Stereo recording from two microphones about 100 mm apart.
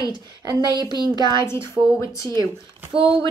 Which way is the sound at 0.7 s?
45° right (ahead or behind).